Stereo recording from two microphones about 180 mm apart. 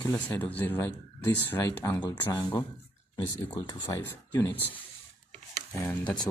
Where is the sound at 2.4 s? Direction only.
25° left (ahead or behind).